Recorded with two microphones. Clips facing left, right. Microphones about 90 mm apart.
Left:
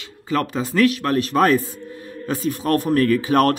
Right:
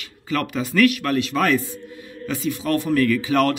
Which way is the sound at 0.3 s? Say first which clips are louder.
Left 2 dB; 30° left (ahead or behind).